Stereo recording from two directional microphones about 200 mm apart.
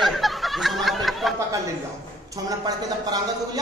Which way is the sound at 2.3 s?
20° right (ahead or behind).